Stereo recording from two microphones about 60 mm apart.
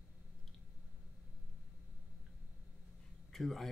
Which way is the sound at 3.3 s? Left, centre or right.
Centre.